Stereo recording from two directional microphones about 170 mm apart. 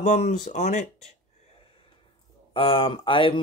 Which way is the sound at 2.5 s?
30° left (ahead or behind).